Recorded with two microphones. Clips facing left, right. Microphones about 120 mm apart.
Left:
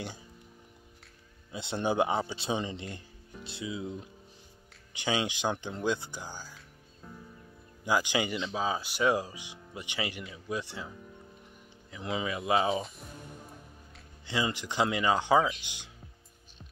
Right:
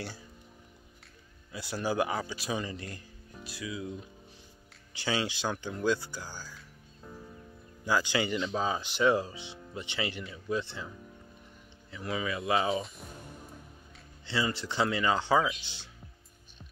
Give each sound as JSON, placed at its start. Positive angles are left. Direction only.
{"t": 1.5, "sound": "speech", "side_deg": 25}
{"t": 4.9, "sound": "speech", "side_deg": 20}
{"t": 7.8, "sound": "speech", "side_deg": 15}
{"t": 11.9, "sound": "speech", "side_deg": 20}
{"t": 12.5, "sound": "speech", "side_deg": 0}
{"t": 14.2, "sound": "speech", "side_deg": 15}